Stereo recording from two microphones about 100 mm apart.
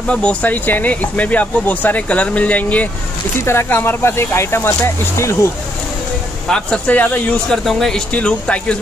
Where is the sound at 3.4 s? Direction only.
25° left (ahead or behind).